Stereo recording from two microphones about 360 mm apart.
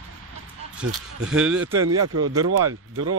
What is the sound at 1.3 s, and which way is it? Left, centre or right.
Speech, centre.